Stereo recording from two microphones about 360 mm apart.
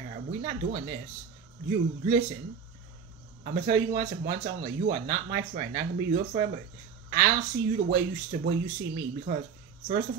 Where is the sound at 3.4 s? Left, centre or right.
Right.